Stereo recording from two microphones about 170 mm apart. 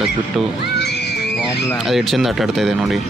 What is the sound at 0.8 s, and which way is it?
Music, 75° left (ahead or behind).